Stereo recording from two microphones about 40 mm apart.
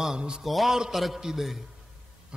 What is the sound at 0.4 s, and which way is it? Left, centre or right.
A man's voice, centre.